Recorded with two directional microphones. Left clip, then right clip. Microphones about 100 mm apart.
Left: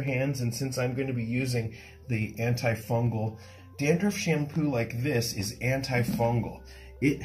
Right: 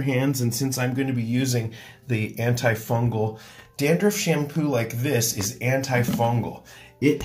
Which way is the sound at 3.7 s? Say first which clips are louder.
Right 6 dB; 15° right (ahead or behind).